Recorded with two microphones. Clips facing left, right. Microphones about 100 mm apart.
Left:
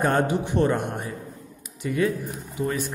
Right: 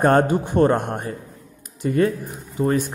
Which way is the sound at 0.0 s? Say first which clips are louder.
Right 5 dB; 55° right (ahead or behind).